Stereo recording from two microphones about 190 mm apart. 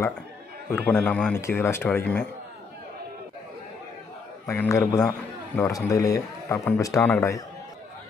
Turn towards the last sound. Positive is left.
turn(degrees=10)  # may be behind; listen again after turning